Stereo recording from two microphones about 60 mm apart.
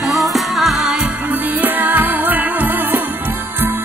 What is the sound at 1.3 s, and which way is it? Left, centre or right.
Music, right.